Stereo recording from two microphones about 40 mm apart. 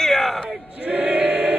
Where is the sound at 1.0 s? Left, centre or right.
Right.